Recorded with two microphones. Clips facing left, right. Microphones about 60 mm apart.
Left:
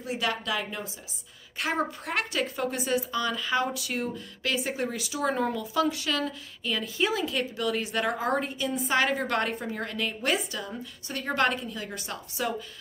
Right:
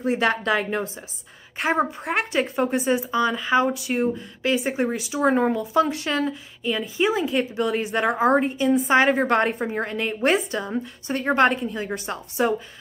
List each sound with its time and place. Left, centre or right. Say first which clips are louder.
0.0 s a woman's voice: right 8 dB; right
1.8 s a woman's voice: right 6 dB; right
6.6 s a woman's voice: right 5 dB; centre